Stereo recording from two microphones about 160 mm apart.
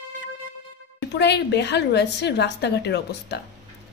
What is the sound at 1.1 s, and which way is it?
A woman's voice, 90° left.